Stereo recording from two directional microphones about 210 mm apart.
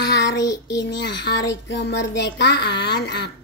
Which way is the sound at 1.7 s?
55° left (ahead or behind).